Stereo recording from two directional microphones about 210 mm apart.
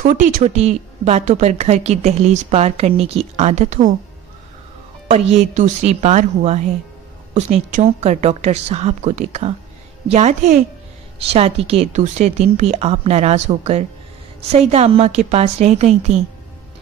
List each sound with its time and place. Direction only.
0.0 s a woman's voice: 40° right (ahead or behind)
5.1 s a woman's voice: 30° right (ahead or behind)